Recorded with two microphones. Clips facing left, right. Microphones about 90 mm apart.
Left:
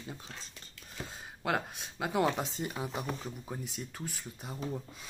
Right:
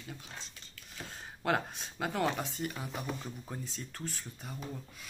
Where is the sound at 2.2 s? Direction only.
20° left (ahead or behind).